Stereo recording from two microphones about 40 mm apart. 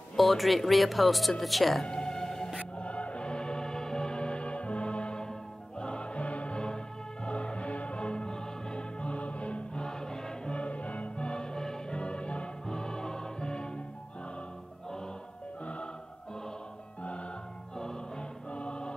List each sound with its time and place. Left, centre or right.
0.1 s speech: centre
1.8 s whale vocalization: centre
2.8 s music: left
9.8 s choir: centre
10.5 s music: left; by 12.0 s centre
12.0 s music: left
15.6 s music: left
17.0 s music: left
17.7 s choir: centre